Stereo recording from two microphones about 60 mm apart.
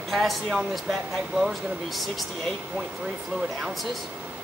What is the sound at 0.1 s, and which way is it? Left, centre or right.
Speech, centre.